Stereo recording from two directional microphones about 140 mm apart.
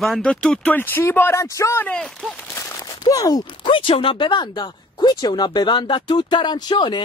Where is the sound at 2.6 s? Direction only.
25° left (ahead or behind).